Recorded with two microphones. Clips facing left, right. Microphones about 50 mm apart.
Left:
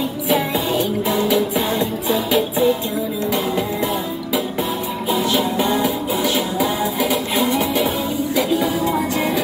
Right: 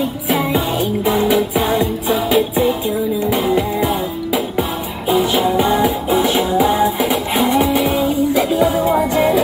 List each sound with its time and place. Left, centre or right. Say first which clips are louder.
1.0 s music: right 6 dB; centre
6.1 s music: right 5 dB; centre